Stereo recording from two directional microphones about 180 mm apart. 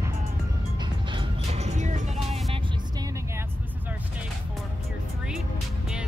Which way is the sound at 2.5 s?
25° right (ahead or behind).